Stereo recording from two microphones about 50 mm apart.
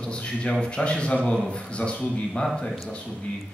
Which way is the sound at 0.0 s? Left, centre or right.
Left.